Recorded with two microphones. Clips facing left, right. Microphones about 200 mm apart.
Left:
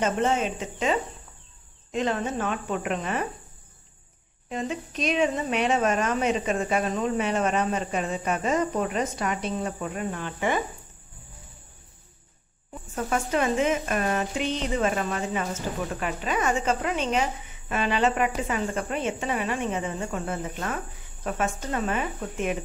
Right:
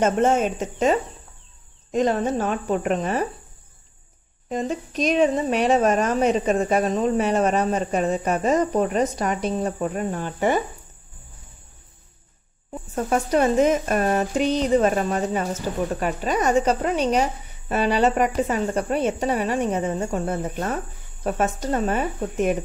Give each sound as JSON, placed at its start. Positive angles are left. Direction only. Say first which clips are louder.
{"t": 0.0, "sound": "speech", "louder": "right 5 dB", "side_deg": -45}
{"t": 4.5, "sound": "speech", "louder": "right 5 dB", "side_deg": -40}
{"t": 12.9, "sound": "speech", "louder": "right 5 dB", "side_deg": -40}